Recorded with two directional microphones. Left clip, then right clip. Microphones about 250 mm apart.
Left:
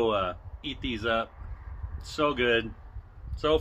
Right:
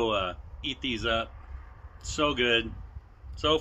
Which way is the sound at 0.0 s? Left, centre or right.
Centre.